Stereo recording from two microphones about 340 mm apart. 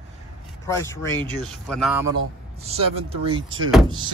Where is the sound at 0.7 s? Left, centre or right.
Centre.